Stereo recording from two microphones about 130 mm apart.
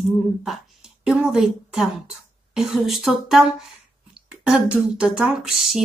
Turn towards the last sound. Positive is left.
turn(degrees=0)  # may be behind; listen again after turning